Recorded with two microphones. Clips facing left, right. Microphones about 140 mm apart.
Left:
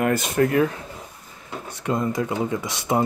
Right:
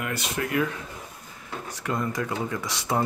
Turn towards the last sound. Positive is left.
turn(degrees=20)  # may be behind; listen again after turning